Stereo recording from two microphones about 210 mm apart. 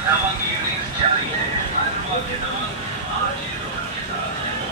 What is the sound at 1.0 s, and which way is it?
Vehicle, 30° right (ahead or behind).